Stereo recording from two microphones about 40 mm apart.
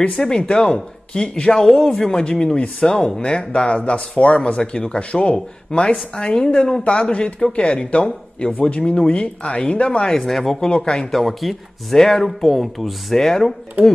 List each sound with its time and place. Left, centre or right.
0.0 s speech: left
8.5 s speech: left
8.8 s speech: left
10.1 s speech: centre
10.6 s speech: left
11.1 s speech: centre